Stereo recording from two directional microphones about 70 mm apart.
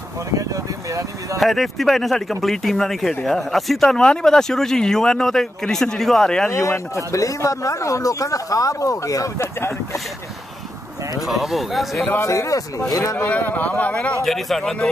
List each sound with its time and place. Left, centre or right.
1.4 s speech: centre
6.5 s speech: left
11.1 s speech: centre
12.3 s speech: left
13.2 s speech: left
14.2 s speech: centre